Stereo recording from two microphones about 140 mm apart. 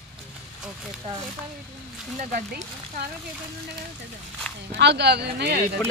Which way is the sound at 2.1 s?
70° right (ahead or behind).